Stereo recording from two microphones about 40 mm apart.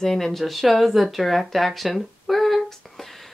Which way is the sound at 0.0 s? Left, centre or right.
Centre.